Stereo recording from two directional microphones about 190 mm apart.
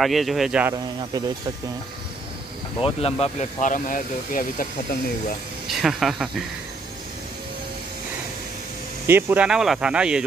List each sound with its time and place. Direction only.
0.0 s speech: centre (ahead or behind)
2.8 s speech: 30° left (ahead or behind); by 4.6 s 45° left (ahead or behind)
5.7 s speech: centre (ahead or behind)
9.0 s speech: 10° right (ahead or behind)